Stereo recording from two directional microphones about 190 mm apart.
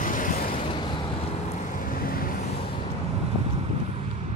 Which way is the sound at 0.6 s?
25° left (ahead or behind).